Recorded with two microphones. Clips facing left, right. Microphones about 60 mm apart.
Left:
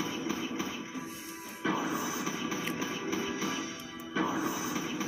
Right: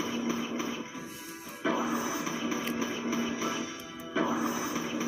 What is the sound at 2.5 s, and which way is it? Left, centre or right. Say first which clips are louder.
Music: right 2 dB; right.